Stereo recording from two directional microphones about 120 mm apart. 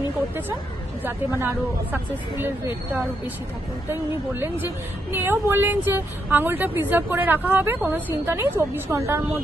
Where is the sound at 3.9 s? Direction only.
20° right (ahead or behind).